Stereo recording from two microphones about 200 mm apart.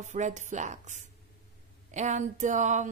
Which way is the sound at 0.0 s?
35° right (ahead or behind).